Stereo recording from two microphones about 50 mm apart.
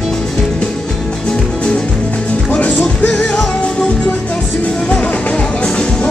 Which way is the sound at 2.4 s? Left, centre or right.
Left.